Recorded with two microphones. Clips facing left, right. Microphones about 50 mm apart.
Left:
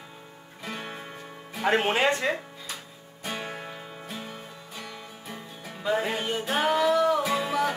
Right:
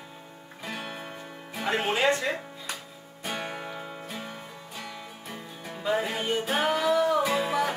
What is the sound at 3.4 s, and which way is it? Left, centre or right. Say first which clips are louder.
Music: right 1 dB; centre.